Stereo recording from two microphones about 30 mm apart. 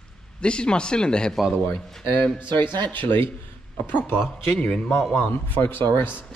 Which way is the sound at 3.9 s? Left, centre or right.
Left.